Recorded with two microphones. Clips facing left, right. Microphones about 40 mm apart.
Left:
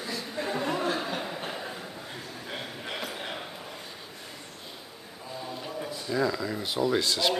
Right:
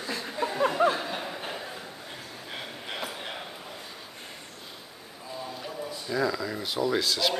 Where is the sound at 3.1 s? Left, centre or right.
Centre.